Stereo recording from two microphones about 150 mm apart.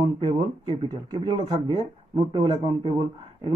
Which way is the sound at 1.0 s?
30° right (ahead or behind).